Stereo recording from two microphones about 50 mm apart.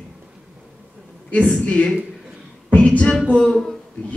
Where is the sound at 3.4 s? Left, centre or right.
Centre.